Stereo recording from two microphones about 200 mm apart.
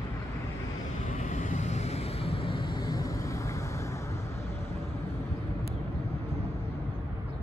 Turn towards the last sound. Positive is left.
turn(degrees=30)  # may be behind; listen again after turning